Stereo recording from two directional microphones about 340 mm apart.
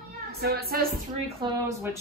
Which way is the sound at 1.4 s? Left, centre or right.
Centre.